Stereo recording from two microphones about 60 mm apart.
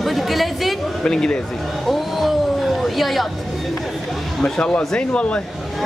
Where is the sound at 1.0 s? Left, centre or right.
Centre.